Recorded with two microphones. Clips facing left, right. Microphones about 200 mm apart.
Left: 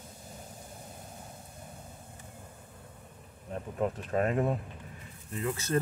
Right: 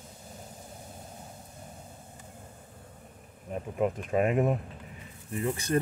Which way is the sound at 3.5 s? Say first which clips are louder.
Right 3 dB; 10° right (ahead or behind).